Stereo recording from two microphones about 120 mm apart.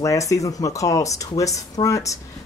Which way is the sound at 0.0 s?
25° left (ahead or behind).